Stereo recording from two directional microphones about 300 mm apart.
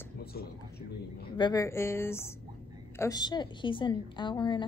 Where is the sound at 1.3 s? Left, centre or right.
Centre.